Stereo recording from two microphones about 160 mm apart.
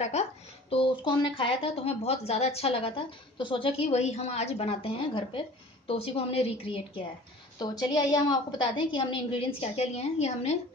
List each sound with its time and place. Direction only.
0.0 s a woman's voice: 45° left (ahead or behind)
7.5 s a woman's voice: 25° left (ahead or behind); by 10.6 s 45° left (ahead or behind)